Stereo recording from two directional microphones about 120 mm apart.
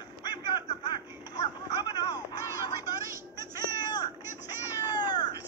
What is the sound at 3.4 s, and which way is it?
Music, 35° left (ahead or behind).